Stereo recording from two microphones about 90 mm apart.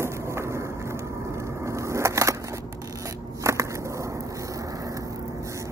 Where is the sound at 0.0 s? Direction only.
30° right (ahead or behind).